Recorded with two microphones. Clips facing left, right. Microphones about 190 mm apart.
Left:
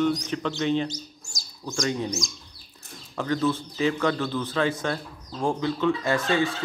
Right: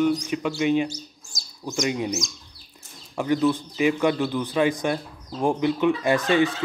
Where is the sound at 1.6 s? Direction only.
20° right (ahead or behind).